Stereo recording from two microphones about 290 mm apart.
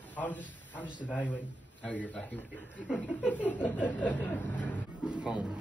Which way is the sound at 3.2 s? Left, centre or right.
Centre.